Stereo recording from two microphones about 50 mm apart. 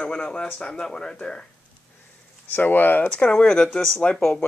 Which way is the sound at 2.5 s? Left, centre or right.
Left.